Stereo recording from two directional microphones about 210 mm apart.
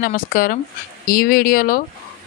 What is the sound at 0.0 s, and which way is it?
Speech, 40° left (ahead or behind).